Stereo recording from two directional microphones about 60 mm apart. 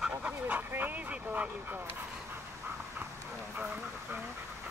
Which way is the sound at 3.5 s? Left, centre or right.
Right.